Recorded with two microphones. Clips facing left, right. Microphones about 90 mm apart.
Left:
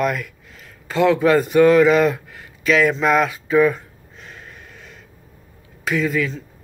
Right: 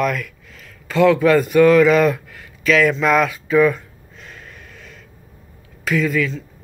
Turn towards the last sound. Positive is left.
turn(degrees=20)  # may be behind; listen again after turning